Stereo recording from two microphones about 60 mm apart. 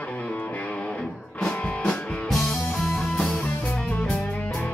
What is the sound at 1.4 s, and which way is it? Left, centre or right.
Music, centre.